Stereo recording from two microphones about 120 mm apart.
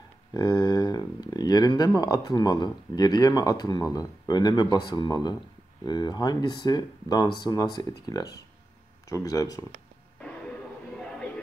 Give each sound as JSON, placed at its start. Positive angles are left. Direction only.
{"t": 0.3, "sound": "speech", "side_deg": 35}